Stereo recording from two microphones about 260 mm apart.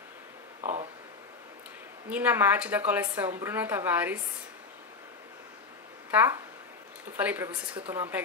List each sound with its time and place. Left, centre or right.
0.6 s a sound: right
2.0 s a woman's voice: centre
6.1 s a woman's voice: centre